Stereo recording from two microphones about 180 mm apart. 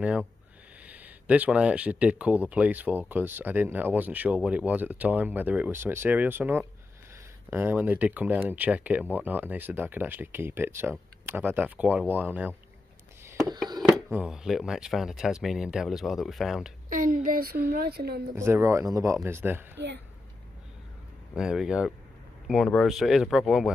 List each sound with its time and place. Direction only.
0.8 s speech: 10° right (ahead or behind)
13.8 s speech: centre (ahead or behind)
16.9 s speech: 50° right (ahead or behind)
18.3 s speech: 15° right (ahead or behind)
21.4 s speech: 5° right (ahead or behind)